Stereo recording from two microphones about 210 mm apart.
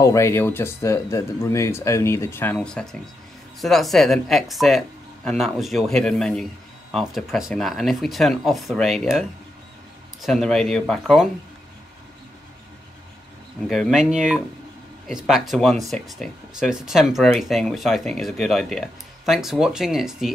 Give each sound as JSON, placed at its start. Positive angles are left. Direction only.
{"t": 0.0, "sound": "speech", "side_deg": 15}
{"t": 10.2, "sound": "speech", "side_deg": 0}
{"t": 13.7, "sound": "speech", "side_deg": 0}